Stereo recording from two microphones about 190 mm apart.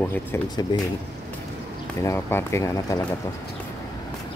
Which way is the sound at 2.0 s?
15° left (ahead or behind).